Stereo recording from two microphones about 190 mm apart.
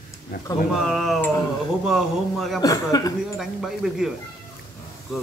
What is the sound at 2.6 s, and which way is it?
Speech, 20° left (ahead or behind).